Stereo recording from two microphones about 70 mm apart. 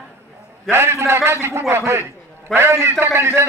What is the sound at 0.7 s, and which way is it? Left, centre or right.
A man's voice, right.